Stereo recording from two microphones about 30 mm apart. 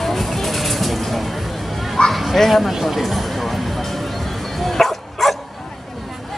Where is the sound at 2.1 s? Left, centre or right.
Centre.